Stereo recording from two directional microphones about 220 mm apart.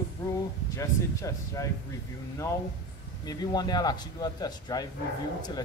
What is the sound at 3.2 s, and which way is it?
Speech, 20° left (ahead or behind).